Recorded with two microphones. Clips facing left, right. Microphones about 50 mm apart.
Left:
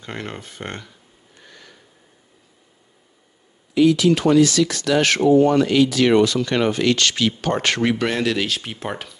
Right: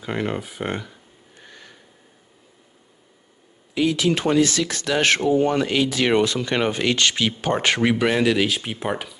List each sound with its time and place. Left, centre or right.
0.0 s speech: centre
3.7 s speech: right; by 9.2 s centre